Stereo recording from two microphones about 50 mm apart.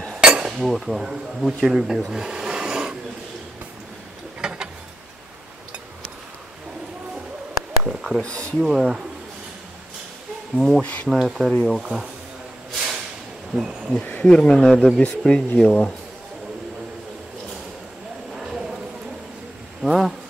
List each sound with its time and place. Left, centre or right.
0.1 s cutlery: centre
0.6 s speech: centre
4.4 s a sound: centre
7.8 s speech: centre
8.2 s speech: left
8.5 s speech: centre
10.5 s speech: centre
10.8 s speech: left
11.1 s speech: centre
13.5 s speech: centre
14.2 s speech: centre
18.3 s clip-clop: centre
19.8 s speech: centre